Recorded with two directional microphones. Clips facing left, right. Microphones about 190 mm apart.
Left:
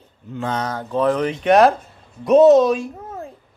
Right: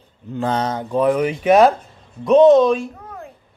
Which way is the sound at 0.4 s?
30° right (ahead or behind).